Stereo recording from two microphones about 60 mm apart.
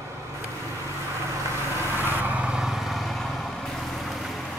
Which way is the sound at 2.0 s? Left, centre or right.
Right.